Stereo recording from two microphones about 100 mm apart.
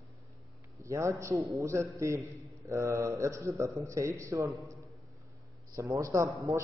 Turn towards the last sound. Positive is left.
turn(degrees=-30)  # may be behind; listen again after turning